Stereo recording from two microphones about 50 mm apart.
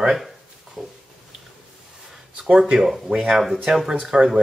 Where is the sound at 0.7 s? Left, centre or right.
Centre.